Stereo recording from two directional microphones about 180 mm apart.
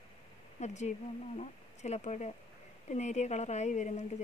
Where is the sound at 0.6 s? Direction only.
40° left (ahead or behind).